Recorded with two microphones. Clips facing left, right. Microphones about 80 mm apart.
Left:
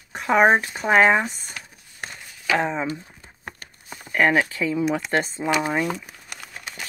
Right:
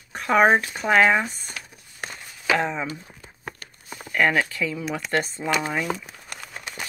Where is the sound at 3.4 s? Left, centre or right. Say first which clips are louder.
Right 1 dB; left.